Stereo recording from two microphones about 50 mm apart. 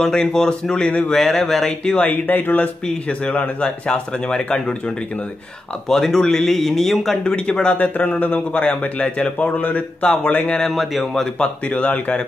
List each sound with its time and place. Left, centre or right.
0.0 s speech: centre
1.0 s speech: centre
2.0 s speech: left
2.9 s speech: left
5.9 s speech: centre
7.2 s speech: left
7.7 s speech: left
10.7 s speech: centre
11.6 s speech: left